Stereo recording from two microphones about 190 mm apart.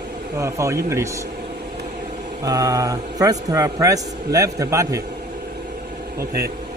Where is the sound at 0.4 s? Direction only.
15° right (ahead or behind).